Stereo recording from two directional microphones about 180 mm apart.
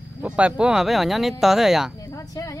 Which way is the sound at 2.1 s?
20° left (ahead or behind).